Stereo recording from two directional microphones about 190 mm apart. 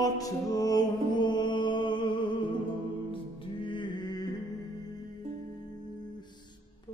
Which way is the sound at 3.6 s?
25° left (ahead or behind).